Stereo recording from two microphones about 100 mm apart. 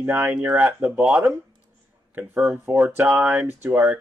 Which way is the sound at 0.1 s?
20° right (ahead or behind).